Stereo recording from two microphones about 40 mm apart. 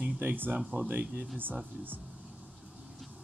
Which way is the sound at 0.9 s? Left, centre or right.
Right.